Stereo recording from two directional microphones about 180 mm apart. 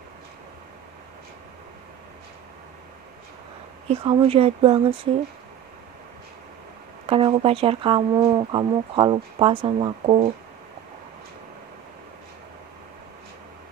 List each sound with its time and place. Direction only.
3.9 s speech: 30° right (ahead or behind)
7.1 s speech: 30° right (ahead or behind)